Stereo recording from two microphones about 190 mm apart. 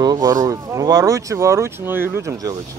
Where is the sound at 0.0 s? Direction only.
20° right (ahead or behind).